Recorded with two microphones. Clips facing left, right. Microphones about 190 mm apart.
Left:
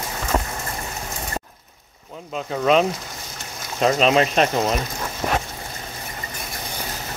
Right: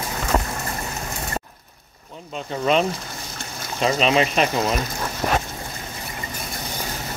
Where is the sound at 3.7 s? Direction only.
40° left (ahead or behind).